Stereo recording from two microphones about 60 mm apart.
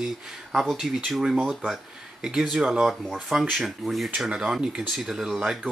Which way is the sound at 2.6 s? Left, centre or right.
Centre.